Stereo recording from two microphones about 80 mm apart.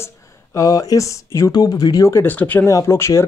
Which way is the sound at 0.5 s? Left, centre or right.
Left.